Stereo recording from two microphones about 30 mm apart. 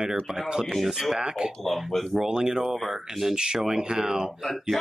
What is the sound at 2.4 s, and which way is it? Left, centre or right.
Speech, centre.